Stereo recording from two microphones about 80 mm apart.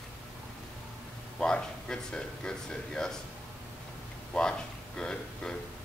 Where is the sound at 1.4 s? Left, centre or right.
Centre.